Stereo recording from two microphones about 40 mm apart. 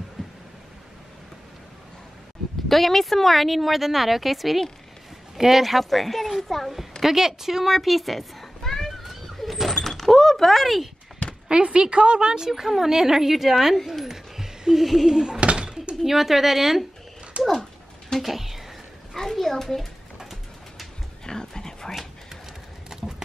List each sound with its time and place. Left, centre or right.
0.2 s a sound: centre
2.7 s a woman's voice: centre
7.0 s cat: centre
9.8 s shatter: centre
11.4 s a woman's voice: right
12.4 s a woman's voice: centre
15.4 s a sound: right
16.0 s a woman's voice: centre
17.4 s speech: right
18.2 s speech: centre
19.1 s a sound: centre
21.3 s a sound: centre
22.8 s run: centre